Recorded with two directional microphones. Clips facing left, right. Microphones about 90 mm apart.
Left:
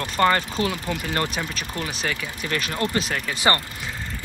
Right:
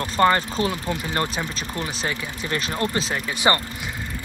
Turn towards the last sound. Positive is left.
turn(degrees=-20)  # may be behind; listen again after turning